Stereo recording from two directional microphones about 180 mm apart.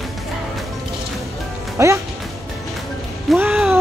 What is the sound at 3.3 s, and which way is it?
Music, 10° right (ahead or behind).